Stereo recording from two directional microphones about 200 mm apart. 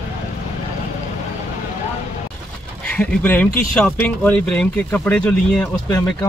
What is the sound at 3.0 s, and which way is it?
Speech, 5° left (ahead or behind).